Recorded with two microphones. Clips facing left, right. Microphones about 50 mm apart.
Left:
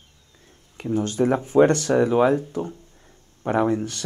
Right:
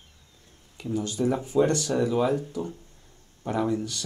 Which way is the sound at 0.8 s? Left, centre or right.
Left.